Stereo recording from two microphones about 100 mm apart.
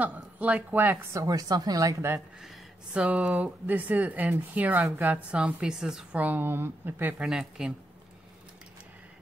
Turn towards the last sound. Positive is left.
turn(degrees=-5)  # may be behind; listen again after turning